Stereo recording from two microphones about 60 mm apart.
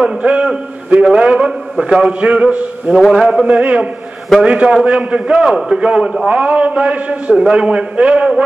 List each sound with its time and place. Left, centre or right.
0.0 s a man's voice: centre
3.1 s a man's voice: centre